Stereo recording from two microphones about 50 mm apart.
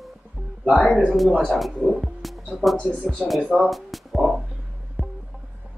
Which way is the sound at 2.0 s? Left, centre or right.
Centre.